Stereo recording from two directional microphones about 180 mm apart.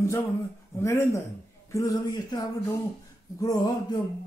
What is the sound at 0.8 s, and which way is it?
A man's voice, 15° left (ahead or behind).